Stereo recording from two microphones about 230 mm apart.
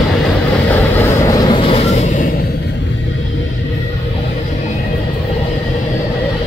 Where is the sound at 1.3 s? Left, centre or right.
Centre.